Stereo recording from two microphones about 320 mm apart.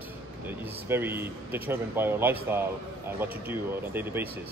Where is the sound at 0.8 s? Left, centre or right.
Centre.